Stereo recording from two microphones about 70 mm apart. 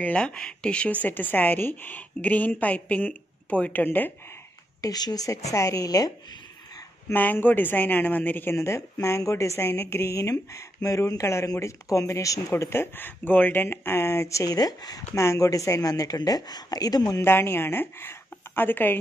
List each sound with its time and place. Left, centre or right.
0.0 s a woman's voice: centre
4.8 s speech: left
7.2 s a woman's voice: left
8.5 s speech: left
12.6 s speech: left
15.1 s speech: left
17.2 s a woman's voice: left